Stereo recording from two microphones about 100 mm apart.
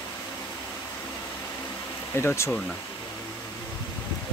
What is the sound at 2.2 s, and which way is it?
Speech, 25° left (ahead or behind).